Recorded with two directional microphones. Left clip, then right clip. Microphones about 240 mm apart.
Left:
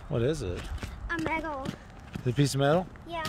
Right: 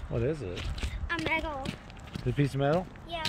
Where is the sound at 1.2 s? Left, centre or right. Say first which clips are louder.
Right 1 dB; left.